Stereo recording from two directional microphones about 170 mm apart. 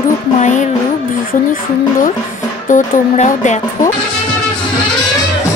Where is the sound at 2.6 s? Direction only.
50° left (ahead or behind).